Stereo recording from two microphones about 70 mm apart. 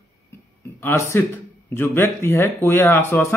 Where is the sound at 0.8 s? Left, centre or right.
Left.